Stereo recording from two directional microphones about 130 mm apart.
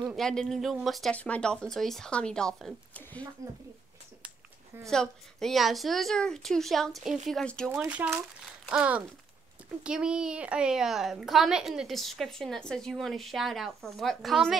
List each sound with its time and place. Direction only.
0.1 s a woman's voice: 5° left (ahead or behind)
4.8 s a woman's voice: 5° left (ahead or behind)
7.7 s a woman's voice: 15° right (ahead or behind)